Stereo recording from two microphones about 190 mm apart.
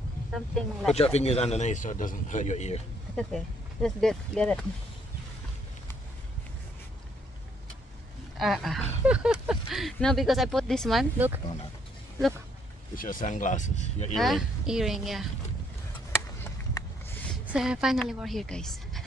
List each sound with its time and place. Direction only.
0.3 s a woman's voice: centre (ahead or behind)
0.9 s speech: 35° left (ahead or behind)
3.2 s speech: centre (ahead or behind)
8.4 s a woman's voice: centre (ahead or behind)
12.9 s speech: 45° left (ahead or behind)
14.1 s a woman's voice: centre (ahead or behind)
17.5 s a woman's voice: 5° right (ahead or behind)